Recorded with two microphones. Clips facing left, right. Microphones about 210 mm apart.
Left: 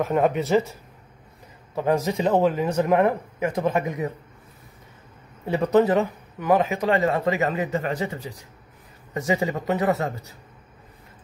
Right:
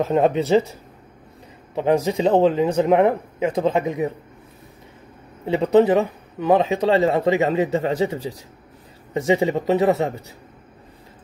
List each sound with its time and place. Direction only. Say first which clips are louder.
0.0 s a man's voice: right 3 dB; 25° right (ahead or behind)
1.8 s a man's voice: right 4 dB; 20° right (ahead or behind)
5.4 s a man's voice: right 3 dB; 20° right (ahead or behind)